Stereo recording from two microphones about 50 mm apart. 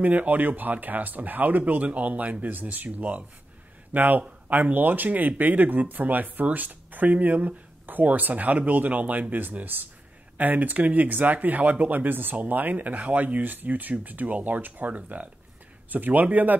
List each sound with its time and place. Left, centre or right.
0.0 s speech: right